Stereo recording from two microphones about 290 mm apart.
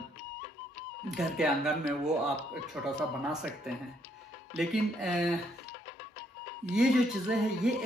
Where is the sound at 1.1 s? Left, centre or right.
Centre.